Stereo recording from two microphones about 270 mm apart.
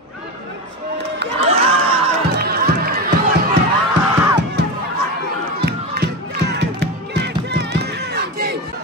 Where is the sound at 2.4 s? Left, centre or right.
Right.